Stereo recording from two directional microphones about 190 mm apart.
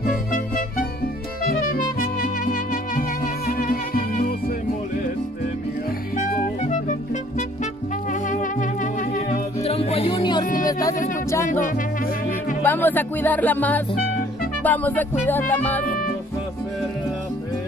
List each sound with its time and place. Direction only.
0.0 s music: 45° left (ahead or behind)
6.1 s music: 40° left (ahead or behind); by 11.0 s 20° left (ahead or behind)
12.6 s speech: 10° left (ahead or behind)